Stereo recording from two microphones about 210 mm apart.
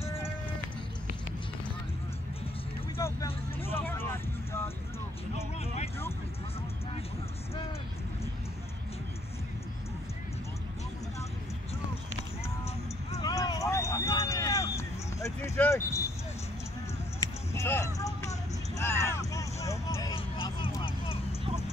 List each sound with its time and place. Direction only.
3.7 s vehicle: 10° left (ahead or behind)
13.1 s vehicle: 15° left (ahead or behind)
17.2 s a sound: 15° left (ahead or behind)